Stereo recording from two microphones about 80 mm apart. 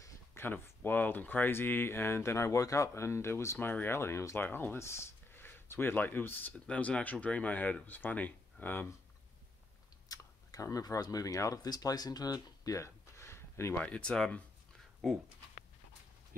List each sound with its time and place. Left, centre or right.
0.0 s speech: left
4.5 s speech: left
10.0 s speech: left
13.7 s speech: centre